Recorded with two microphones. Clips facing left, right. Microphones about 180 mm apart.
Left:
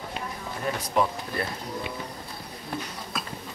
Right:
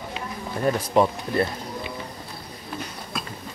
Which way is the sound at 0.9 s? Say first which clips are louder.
Right 5 dB; 30° right (ahead or behind).